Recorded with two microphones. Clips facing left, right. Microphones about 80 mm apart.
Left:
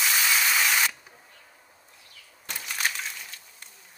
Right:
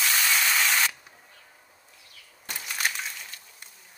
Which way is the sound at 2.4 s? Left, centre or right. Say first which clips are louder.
Even; centre.